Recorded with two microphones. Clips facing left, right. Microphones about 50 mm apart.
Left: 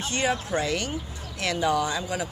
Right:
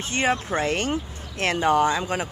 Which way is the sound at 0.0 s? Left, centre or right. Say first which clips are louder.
Right 3 dB; right.